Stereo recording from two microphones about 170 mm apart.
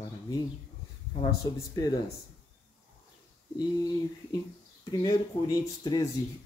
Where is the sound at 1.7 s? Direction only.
20° left (ahead or behind).